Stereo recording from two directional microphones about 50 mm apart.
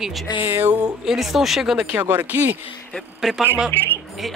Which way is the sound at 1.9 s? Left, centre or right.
Right.